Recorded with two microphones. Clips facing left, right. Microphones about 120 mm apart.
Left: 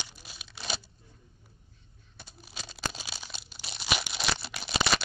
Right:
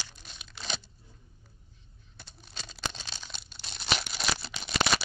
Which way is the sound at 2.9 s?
5° left (ahead or behind).